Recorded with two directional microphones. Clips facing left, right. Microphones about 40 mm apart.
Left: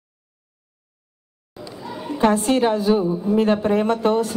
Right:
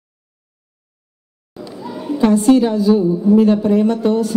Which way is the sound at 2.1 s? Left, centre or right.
Left.